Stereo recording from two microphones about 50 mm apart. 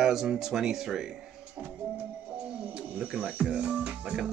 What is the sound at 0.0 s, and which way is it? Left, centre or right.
Speech, centre.